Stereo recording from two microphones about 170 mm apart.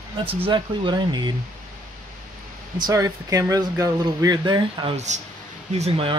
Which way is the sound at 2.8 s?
20° right (ahead or behind).